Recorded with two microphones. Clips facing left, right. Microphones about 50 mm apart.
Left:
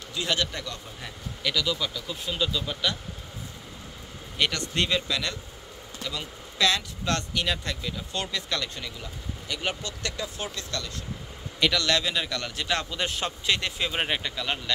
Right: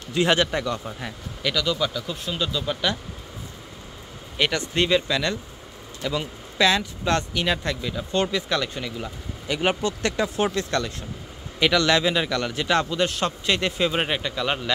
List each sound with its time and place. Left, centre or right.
0.1 s speech: right
1.4 s speech: centre
4.4 s speech: centre
8.9 s speech: right
9.6 s speech: right
11.6 s speech: centre
13.0 s a man's voice: centre
13.5 s speech: centre